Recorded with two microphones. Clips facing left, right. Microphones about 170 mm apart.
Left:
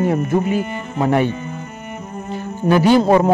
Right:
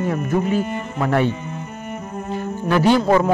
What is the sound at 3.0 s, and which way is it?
Speech, 25° left (ahead or behind).